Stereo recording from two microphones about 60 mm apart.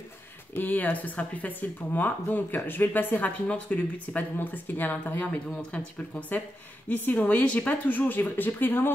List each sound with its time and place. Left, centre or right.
0.6 s speech: left